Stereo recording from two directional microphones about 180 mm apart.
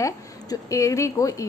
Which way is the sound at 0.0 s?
20° left (ahead or behind).